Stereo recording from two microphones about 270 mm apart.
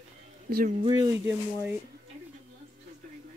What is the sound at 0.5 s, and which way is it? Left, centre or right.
Speech, right.